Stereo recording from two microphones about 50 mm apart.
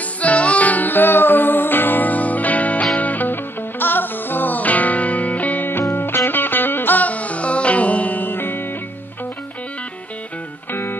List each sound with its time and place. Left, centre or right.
0.2 s music: left
5.7 s music: left
10.7 s music: left